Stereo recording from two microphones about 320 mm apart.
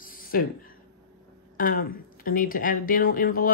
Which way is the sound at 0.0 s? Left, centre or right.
Left.